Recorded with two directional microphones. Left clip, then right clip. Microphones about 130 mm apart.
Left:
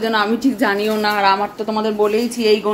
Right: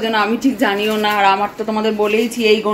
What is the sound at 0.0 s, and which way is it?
A woman's voice, 15° left (ahead or behind).